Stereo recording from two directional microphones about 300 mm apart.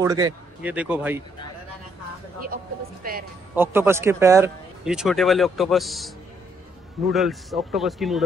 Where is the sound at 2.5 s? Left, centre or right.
Right.